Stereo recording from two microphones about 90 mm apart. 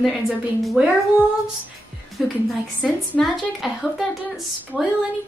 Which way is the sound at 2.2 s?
Centre (ahead or behind).